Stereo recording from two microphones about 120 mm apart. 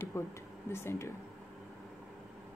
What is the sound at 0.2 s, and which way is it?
Speech, 20° left (ahead or behind).